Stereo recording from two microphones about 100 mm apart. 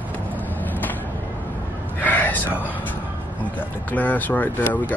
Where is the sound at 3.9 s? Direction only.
15° left (ahead or behind).